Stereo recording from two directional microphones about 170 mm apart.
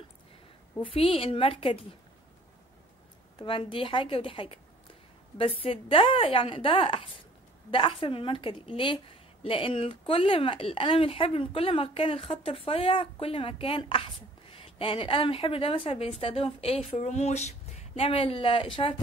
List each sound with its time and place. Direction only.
0.8 s a woman's voice: 35° left (ahead or behind)
3.3 s a woman's voice: 30° left (ahead or behind)